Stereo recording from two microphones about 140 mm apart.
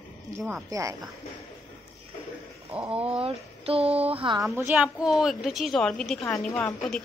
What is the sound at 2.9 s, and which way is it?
Speech, 40° right (ahead or behind).